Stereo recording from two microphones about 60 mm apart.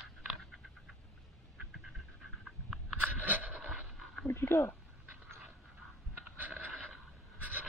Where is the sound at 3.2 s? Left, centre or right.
Right.